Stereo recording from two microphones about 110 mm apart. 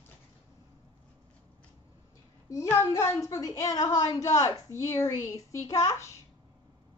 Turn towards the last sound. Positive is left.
turn(degrees=35)  # may be behind; listen again after turning